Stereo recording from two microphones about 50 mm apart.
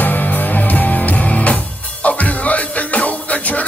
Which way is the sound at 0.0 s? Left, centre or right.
Left.